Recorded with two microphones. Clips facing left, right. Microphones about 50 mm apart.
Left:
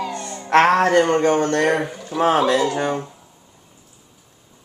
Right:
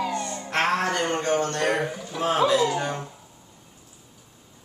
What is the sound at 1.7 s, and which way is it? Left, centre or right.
Speech, centre.